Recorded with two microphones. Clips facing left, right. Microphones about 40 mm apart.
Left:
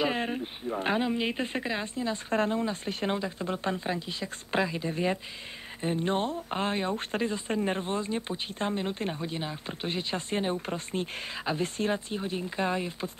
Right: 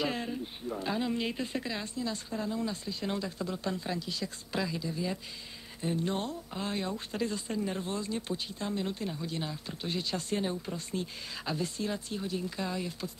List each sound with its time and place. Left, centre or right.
0.7 s speech: left
1.0 s speech: left
2.2 s speech: left
3.2 s speech: left
4.9 s speech: left
5.8 s speech: left
9.3 s speech: left